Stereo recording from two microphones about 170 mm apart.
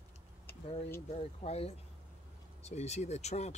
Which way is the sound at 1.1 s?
35° left (ahead or behind).